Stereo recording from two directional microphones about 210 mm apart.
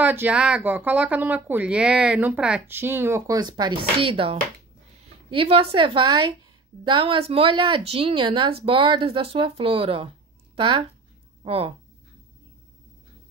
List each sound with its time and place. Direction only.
0.0 s speech: 10° right (ahead or behind); by 10.0 s 25° right (ahead or behind)
10.5 s a sound: 25° right (ahead or behind)
11.4 s speech: 25° right (ahead or behind)